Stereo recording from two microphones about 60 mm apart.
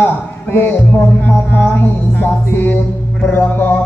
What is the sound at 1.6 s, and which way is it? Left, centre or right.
Music, left.